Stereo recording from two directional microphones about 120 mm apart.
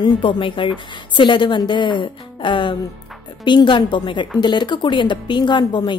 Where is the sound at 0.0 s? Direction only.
45° left (ahead or behind).